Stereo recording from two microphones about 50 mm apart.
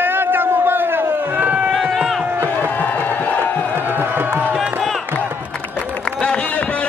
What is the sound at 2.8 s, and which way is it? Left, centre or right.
Crowd, left.